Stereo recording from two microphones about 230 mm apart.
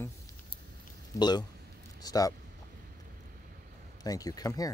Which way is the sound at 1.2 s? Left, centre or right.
Centre.